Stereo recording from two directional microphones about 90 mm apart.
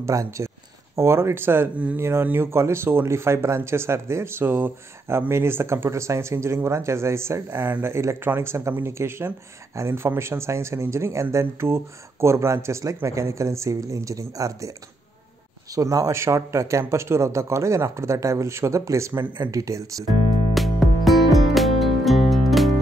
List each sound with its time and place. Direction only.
0.0 s speech: 35° right (ahead or behind)
15.7 s speech: 40° right (ahead or behind)
20.5 s music: centre (ahead or behind)